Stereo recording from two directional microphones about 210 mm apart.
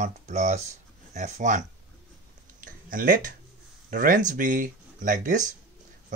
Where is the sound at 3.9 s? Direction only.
40° right (ahead or behind).